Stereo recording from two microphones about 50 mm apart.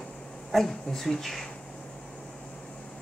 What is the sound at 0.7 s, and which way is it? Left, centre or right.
Speech, centre.